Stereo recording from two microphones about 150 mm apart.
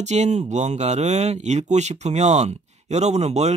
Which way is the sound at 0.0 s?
50° right (ahead or behind).